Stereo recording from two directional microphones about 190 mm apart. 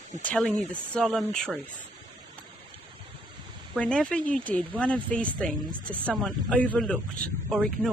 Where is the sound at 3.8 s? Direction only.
5° left (ahead or behind).